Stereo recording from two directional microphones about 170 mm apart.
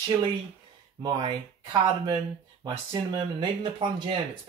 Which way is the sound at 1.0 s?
30° right (ahead or behind).